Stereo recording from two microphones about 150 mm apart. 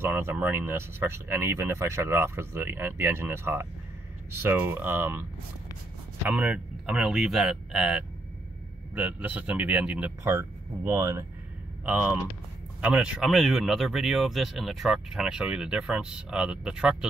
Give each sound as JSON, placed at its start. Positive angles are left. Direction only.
{"t": 0.0, "sound": "speech", "side_deg": -15}
{"t": 6.2, "sound": "speech", "side_deg": -10}